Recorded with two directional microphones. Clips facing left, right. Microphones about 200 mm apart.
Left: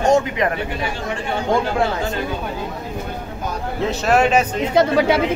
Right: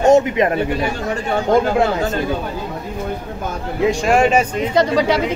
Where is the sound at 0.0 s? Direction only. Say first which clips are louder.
Right 4 dB; 25° right (ahead or behind).